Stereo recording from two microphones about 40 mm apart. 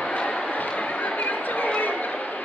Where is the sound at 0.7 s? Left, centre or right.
Left.